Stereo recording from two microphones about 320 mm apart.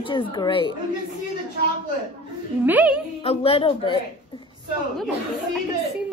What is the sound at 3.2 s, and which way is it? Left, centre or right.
Speech, centre.